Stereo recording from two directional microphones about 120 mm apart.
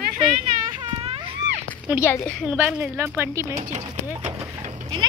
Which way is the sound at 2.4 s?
10° right (ahead or behind).